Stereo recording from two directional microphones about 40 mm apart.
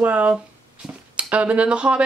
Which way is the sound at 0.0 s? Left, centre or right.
Right.